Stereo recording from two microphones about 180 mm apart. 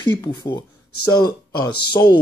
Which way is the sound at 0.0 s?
25° left (ahead or behind).